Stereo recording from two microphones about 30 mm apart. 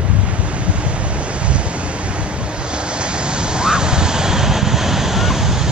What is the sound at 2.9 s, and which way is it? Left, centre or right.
Waves, right.